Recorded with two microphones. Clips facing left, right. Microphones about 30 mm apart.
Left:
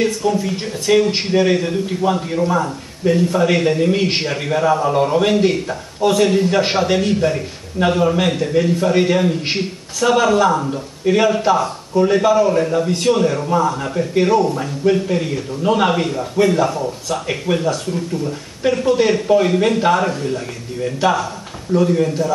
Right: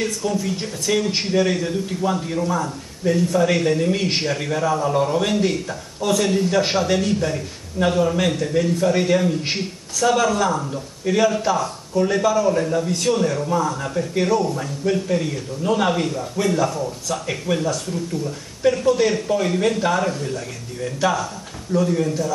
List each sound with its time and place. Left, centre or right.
0.0 s speech: centre